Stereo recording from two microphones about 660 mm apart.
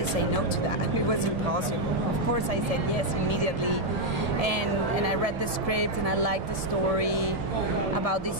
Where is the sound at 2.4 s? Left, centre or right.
Right.